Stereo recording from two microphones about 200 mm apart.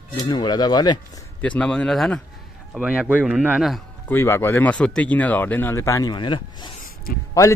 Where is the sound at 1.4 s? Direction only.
5° left (ahead or behind).